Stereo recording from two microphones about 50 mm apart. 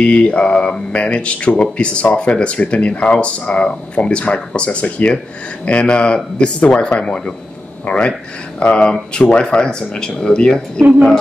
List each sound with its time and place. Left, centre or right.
0.0 s speech: left